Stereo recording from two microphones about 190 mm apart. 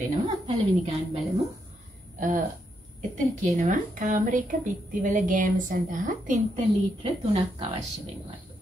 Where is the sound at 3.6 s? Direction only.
45° right (ahead or behind).